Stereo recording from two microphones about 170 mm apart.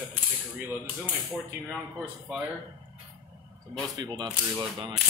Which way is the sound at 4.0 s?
25° right (ahead or behind).